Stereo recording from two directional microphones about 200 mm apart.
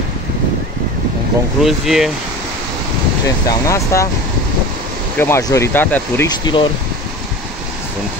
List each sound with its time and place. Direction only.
1.6 s speech: centre (ahead or behind)
3.4 s speech: 15° left (ahead or behind)
5.2 s speech: 15° left (ahead or behind)
6.4 s speech: 25° left (ahead or behind)